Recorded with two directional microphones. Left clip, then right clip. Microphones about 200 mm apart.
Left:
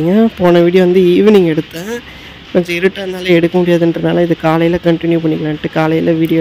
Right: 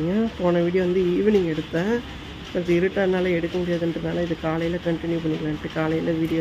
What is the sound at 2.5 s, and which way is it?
Speech, 50° left (ahead or behind).